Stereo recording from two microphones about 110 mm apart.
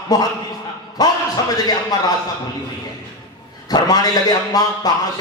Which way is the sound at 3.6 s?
35° left (ahead or behind).